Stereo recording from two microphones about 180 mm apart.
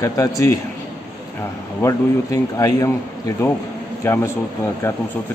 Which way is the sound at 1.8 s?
15° left (ahead or behind).